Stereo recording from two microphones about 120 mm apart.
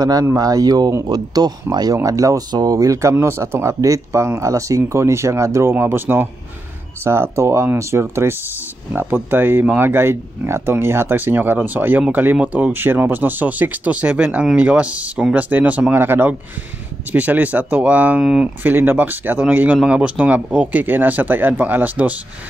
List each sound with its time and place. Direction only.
0.0 s speech: 30° right (ahead or behind); by 22.1 s 15° right (ahead or behind)